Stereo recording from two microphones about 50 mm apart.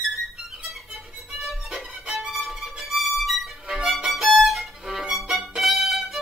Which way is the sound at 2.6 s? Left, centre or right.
Centre.